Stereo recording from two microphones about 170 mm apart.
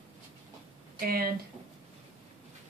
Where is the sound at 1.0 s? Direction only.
60° right (ahead or behind).